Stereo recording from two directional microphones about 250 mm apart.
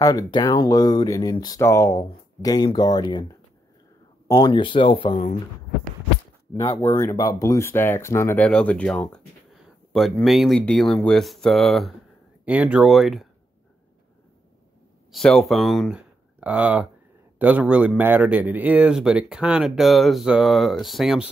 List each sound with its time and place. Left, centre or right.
0.0 s speech: centre
4.3 s speech: centre
6.5 s speech: centre
15.0 s speech: centre